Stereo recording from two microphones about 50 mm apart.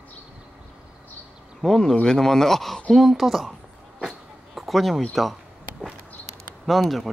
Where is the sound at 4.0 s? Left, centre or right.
Centre.